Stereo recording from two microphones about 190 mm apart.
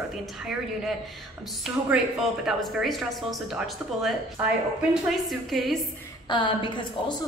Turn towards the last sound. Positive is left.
turn(degrees=25)  # may be behind; listen again after turning